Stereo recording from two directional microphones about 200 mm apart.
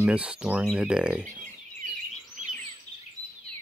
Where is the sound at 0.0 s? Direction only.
5° right (ahead or behind).